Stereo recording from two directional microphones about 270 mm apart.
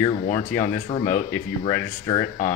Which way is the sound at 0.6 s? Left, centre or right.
Left.